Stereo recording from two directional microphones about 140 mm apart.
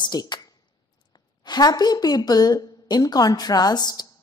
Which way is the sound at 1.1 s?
30° left (ahead or behind).